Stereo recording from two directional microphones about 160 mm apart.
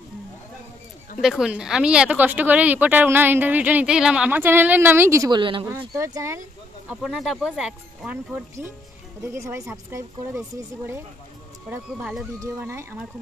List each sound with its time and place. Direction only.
1.2 s speech: 5° right (ahead or behind); by 5.4 s 20° right (ahead or behind)
5.4 s speech: 30° right (ahead or behind)
5.7 s speech: 20° right (ahead or behind)
6.9 s speech: 5° right (ahead or behind)
11.7 s speech: 5° right (ahead or behind)
12.4 s speech: 15° right (ahead or behind)